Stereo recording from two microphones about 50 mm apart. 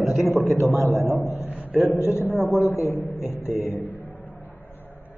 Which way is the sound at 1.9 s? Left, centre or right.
Left.